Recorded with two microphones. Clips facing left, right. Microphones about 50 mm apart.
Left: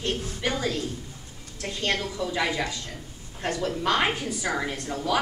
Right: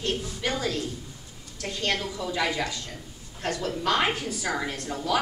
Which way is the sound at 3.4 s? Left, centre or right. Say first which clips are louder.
Left 2 dB; centre.